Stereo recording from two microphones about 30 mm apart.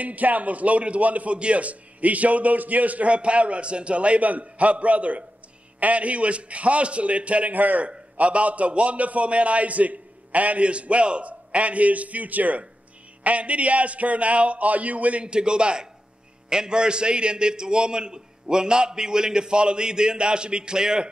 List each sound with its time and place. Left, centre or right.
0.0 s a man's voice: right
1.3 s a man's voice: right
7.5 s a man's voice: right
8.2 s a man's voice: right
13.2 s a man's voice: right
15.2 s a man's voice: right